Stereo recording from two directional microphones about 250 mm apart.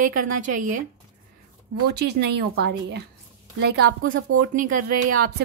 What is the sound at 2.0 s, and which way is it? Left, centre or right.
A woman's voice, right.